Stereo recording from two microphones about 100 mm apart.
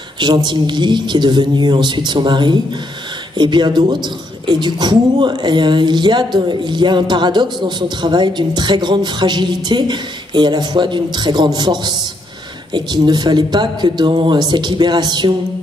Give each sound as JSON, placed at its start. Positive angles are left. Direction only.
{"t": 0.2, "sound": "a woman's voice", "side_deg": -50}